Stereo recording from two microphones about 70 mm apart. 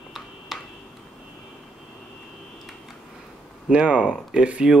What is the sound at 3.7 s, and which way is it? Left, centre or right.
Speech, centre.